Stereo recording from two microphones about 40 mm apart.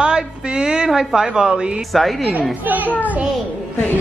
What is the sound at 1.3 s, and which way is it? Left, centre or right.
Speech, right.